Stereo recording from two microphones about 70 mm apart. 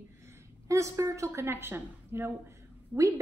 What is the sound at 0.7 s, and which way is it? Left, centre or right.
A woman's voice, right.